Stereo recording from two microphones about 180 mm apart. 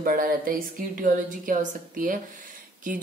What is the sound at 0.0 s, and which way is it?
A woman's voice, 50° right (ahead or behind).